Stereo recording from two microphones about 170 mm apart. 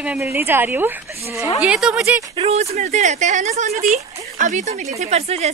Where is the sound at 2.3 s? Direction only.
35° right (ahead or behind).